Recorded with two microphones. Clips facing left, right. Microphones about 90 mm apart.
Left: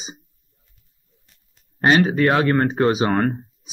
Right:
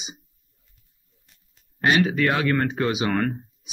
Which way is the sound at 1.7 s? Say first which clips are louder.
Left 4 dB; 35° left (ahead or behind).